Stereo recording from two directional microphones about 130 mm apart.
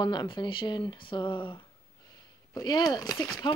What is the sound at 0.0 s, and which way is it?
Speech, 35° left (ahead or behind).